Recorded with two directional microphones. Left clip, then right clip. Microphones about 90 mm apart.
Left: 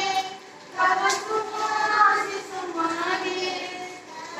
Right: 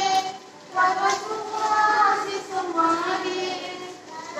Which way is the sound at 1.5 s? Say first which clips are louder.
Right 8 dB; 30° right (ahead or behind).